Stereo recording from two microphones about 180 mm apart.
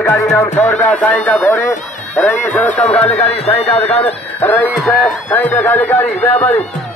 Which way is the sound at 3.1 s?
35° left (ahead or behind).